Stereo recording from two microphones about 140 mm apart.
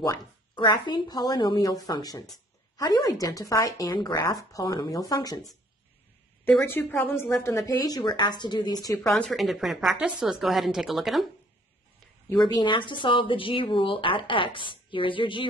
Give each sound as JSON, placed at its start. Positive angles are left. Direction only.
{"t": 0.6, "sound": "speech", "side_deg": 35}
{"t": 6.4, "sound": "speech", "side_deg": 15}
{"t": 9.2, "sound": "a woman's voice", "side_deg": 0}
{"t": 12.3, "sound": "a woman's voice", "side_deg": 30}